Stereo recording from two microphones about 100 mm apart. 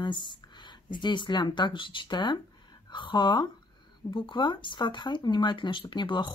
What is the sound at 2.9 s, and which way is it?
Speech, 50° left (ahead or behind).